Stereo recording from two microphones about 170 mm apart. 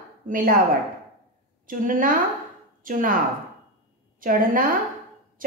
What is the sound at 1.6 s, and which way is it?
A woman's voice, 55° right (ahead or behind).